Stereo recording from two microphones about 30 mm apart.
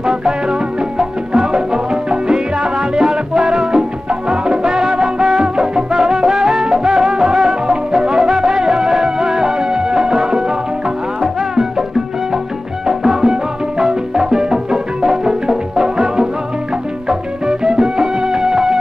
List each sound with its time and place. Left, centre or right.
0.0 s music: right
12.8 s music: centre